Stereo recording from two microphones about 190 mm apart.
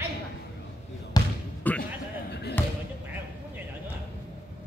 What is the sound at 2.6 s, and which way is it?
Basketball bounce, 10° left (ahead or behind).